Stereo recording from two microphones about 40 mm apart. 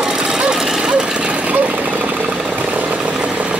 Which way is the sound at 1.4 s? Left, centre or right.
Right.